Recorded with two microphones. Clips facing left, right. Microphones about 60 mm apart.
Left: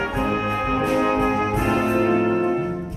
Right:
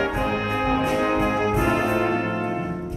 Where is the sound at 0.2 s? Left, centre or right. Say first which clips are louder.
Left 1 dB; centre.